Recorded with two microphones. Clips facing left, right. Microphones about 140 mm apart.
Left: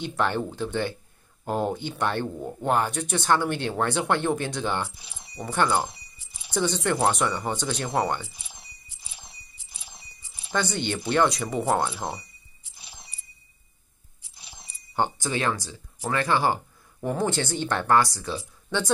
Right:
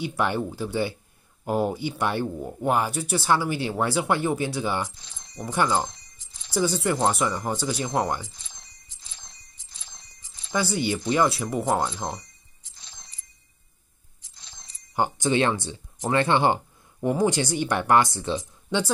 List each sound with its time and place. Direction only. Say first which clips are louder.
0.0 s speech: right 1 dB; 10° right (ahead or behind)
4.8 s speech: even; 10° left (ahead or behind)
5.4 s speech: even; 10° right (ahead or behind)
5.7 s keys jangling: even; 10° left (ahead or behind)
6.5 s speech: right 1 dB; 5° right (ahead or behind)
8.3 s a sound: left 2 dB; 10° left (ahead or behind)
10.5 s speech: right 2 dB; 5° right (ahead or behind)
11.8 s a sound: even; 10° left (ahead or behind)
14.3 s music: left 3 dB; 10° left (ahead or behind)
15.0 s speech: right 4 dB; 20° right (ahead or behind)